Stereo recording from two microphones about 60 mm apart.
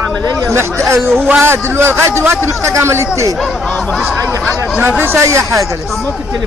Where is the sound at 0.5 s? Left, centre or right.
Right.